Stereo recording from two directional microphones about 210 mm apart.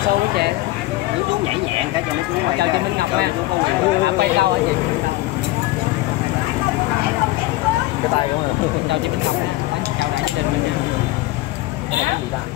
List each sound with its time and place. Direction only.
2.6 s speech: 50° right (ahead or behind)